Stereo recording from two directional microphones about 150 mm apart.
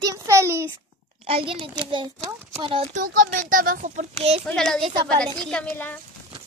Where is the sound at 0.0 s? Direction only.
20° right (ahead or behind).